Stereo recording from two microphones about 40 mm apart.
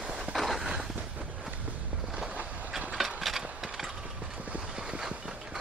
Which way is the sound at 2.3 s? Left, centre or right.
Right.